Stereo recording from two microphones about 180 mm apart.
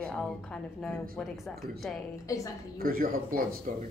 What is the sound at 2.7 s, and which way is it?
Speech, 55° right (ahead or behind).